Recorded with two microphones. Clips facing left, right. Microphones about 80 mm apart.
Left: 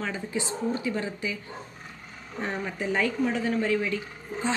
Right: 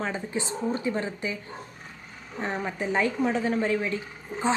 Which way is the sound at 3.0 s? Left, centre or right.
Right.